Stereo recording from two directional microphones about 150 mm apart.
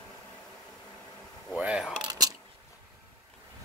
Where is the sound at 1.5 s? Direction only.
5° right (ahead or behind).